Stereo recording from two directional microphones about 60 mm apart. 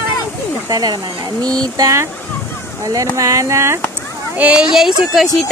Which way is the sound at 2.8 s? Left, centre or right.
Right.